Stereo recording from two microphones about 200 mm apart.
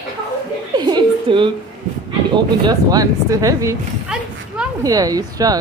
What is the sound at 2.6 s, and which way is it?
Speech, 20° right (ahead or behind).